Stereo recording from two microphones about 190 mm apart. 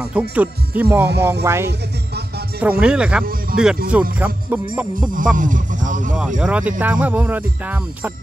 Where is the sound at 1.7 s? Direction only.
60° right (ahead or behind).